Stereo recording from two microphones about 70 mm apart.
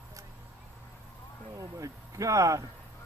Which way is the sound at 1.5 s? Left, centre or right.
Right.